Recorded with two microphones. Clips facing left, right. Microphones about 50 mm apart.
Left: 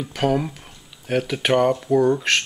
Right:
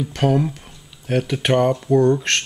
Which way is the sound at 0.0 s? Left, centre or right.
Centre.